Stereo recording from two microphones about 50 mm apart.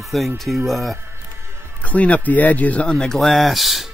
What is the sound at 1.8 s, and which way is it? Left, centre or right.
Speech, left.